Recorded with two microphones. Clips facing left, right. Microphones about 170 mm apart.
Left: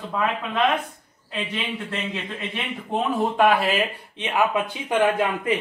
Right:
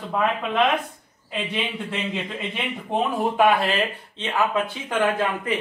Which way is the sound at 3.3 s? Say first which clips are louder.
Even; centre (ahead or behind).